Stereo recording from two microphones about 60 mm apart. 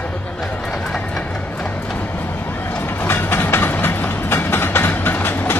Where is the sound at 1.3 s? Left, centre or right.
Left.